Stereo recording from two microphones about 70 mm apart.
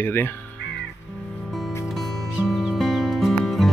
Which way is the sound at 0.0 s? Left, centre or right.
Left.